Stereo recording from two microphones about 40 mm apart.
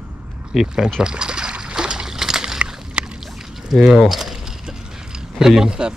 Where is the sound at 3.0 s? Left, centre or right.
Right.